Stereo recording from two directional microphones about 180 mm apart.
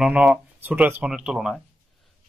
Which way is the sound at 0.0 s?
5° right (ahead or behind).